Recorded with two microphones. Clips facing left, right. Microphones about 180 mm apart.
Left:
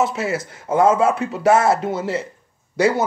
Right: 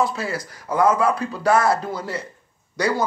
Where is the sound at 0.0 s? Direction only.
25° left (ahead or behind).